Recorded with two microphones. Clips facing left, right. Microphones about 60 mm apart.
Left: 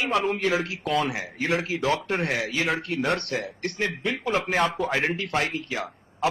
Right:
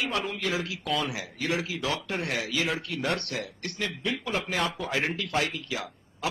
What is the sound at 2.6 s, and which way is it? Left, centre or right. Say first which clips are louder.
A man's voice: left 4 dB; left.